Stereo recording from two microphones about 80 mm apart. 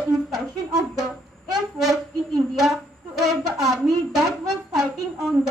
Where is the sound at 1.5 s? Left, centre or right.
Centre.